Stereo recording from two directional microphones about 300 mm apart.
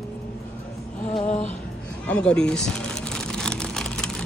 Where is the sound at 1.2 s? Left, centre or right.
Left.